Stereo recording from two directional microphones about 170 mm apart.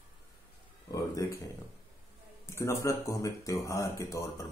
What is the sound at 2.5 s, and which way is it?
Speech, 15° left (ahead or behind).